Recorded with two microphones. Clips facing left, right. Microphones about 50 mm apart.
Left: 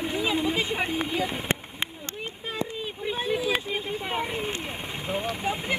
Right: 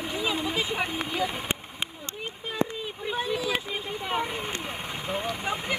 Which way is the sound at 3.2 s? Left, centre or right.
Centre.